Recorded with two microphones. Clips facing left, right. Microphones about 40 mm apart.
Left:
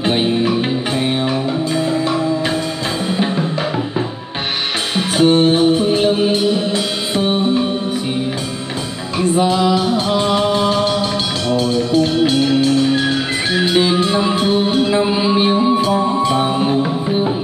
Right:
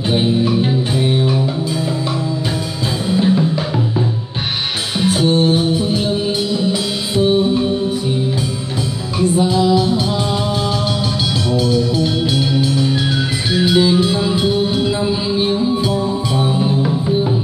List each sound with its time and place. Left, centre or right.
0.1 s music: left
3.2 s music: left
5.0 s music: left
7.2 s music: left
9.3 s music: left
10.5 s music: left
12.0 s music: left